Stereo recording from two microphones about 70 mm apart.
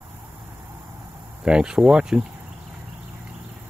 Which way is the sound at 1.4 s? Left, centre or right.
Centre.